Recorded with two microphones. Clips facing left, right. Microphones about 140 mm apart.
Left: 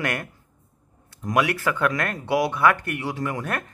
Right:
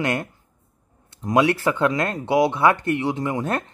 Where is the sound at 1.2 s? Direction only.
25° right (ahead or behind).